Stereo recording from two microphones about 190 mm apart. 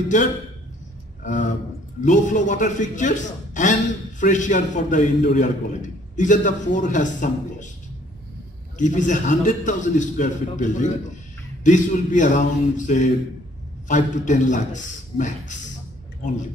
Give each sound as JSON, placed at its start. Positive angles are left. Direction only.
{"t": 1.2, "sound": "a man's voice", "side_deg": 40}
{"t": 8.7, "sound": "a man's voice", "side_deg": 40}